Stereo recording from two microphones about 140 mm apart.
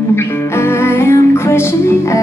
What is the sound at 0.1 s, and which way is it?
Music, 15° left (ahead or behind).